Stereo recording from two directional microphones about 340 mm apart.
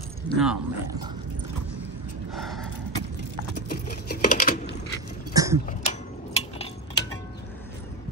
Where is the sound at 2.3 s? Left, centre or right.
Centre.